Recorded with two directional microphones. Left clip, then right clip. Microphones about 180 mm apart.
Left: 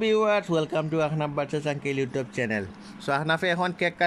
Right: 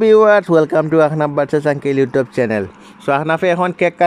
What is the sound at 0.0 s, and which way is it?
A man's voice, 30° right (ahead or behind).